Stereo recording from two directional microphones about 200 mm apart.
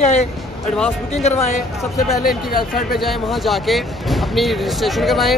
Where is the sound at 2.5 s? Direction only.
45° left (ahead or behind).